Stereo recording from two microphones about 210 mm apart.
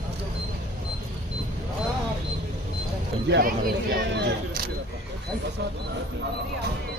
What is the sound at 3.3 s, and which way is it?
Speech, 45° right (ahead or behind).